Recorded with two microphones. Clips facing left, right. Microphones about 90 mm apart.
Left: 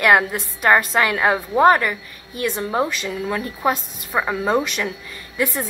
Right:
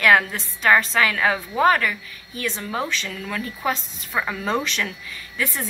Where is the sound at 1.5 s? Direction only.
30° left (ahead or behind).